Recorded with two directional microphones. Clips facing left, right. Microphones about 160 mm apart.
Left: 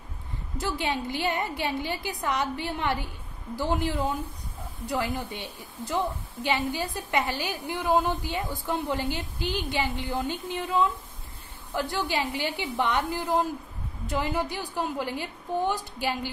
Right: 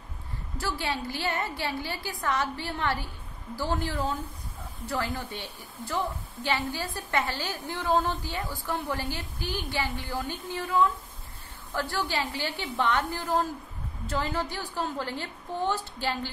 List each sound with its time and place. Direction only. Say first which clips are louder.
0.6 s a woman's voice: left 2 dB; 20° left (ahead or behind)